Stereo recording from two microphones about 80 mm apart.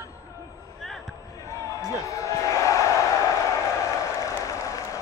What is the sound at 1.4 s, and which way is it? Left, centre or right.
Basketball bounce, left.